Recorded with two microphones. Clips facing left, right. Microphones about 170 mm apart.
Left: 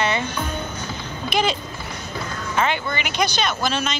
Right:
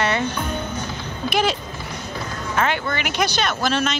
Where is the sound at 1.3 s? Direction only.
5° right (ahead or behind).